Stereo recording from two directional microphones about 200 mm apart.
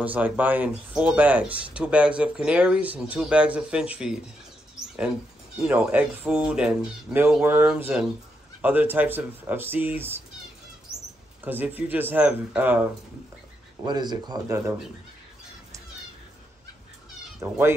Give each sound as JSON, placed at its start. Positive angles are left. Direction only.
{"t": 0.0, "sound": "speech", "side_deg": -10}
{"t": 5.6, "sound": "speech", "side_deg": -5}
{"t": 11.4, "sound": "speech", "side_deg": -10}
{"t": 13.8, "sound": "speech", "side_deg": -20}
{"t": 17.4, "sound": "speech", "side_deg": -10}